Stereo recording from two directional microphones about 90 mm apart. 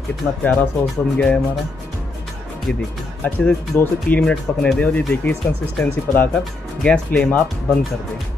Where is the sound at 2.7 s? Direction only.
10° left (ahead or behind).